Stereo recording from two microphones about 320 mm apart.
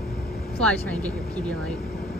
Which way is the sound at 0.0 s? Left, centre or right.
Left.